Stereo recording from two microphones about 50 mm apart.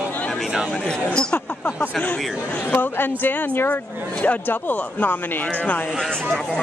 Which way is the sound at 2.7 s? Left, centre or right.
Left.